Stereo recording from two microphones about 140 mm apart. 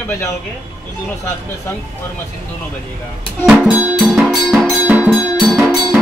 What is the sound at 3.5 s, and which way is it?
Music, 10° right (ahead or behind).